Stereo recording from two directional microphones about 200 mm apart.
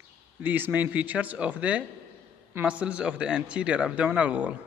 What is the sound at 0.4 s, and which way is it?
A man's voice, 10° right (ahead or behind).